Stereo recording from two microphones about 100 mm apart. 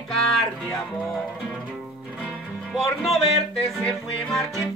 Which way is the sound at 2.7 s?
Centre (ahead or behind).